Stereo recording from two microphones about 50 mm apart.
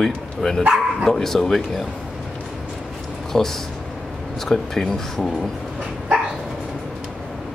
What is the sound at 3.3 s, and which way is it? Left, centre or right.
A man's voice, centre.